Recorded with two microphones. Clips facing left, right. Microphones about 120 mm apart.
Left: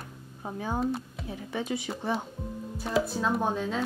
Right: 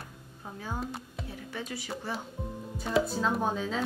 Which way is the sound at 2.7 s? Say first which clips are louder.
Even; centre (ahead or behind).